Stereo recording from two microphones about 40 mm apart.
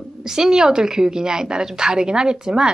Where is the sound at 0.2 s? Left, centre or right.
Centre.